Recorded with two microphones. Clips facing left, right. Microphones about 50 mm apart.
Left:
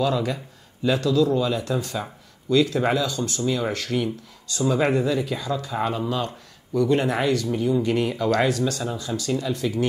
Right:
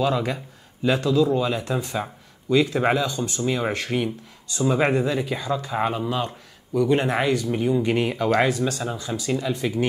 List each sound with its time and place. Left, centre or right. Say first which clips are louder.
0.0 s speech: even; centre